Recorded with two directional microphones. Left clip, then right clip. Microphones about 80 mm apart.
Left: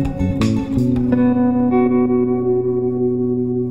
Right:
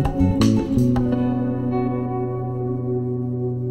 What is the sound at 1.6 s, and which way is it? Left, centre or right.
Music, left.